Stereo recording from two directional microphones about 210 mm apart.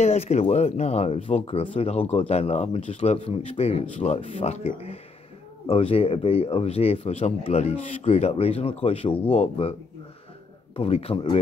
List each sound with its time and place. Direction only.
0.0 s speech: 30° left (ahead or behind)
10.8 s speech: 30° left (ahead or behind)